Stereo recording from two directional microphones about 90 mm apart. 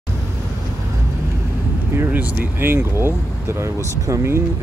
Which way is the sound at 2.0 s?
15° right (ahead or behind).